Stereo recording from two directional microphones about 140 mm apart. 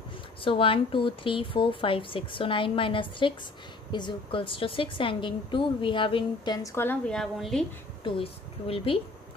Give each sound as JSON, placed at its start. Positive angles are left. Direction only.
{"t": 0.4, "sound": "speech", "side_deg": 40}
{"t": 6.7, "sound": "a woman's voice", "side_deg": 15}
{"t": 7.1, "sound": "a woman's voice", "side_deg": 0}
{"t": 8.0, "sound": "a woman's voice", "side_deg": 40}